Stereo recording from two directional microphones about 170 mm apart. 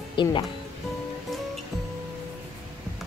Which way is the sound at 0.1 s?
30° left (ahead or behind).